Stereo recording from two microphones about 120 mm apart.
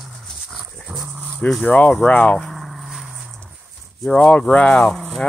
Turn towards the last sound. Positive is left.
turn(degrees=10)  # may be behind; listen again after turning